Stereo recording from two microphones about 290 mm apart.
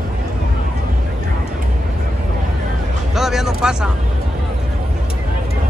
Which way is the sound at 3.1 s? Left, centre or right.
Centre.